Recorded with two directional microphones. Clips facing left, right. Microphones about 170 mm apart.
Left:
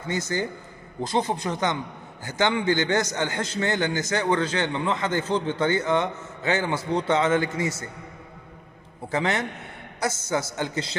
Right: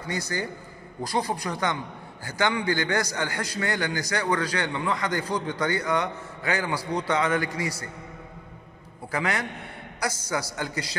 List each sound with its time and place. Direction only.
0.1 s a man's voice: 25° left (ahead or behind)
9.1 s a man's voice: 25° left (ahead or behind)